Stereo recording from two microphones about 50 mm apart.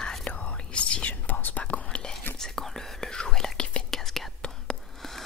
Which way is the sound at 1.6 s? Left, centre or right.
Left.